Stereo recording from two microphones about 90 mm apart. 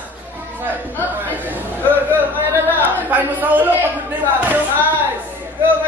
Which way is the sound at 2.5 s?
20° right (ahead or behind).